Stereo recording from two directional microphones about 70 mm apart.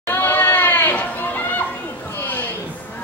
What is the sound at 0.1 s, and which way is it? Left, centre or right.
Goat, left.